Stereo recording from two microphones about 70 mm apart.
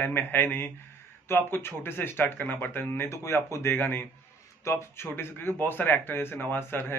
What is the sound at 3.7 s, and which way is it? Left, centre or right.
Speech, left.